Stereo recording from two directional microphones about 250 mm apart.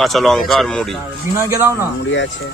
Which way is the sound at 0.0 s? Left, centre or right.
Centre.